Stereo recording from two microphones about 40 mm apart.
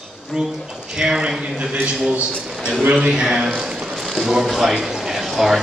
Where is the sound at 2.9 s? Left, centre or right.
Right.